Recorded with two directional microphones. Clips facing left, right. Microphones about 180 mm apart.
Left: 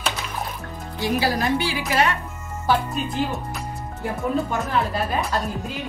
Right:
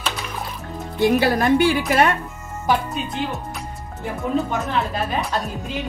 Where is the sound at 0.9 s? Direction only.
55° right (ahead or behind).